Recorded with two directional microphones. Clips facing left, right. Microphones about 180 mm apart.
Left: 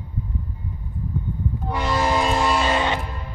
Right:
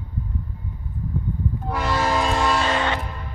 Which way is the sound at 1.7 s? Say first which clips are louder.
Left 1 dB; centre (ahead or behind).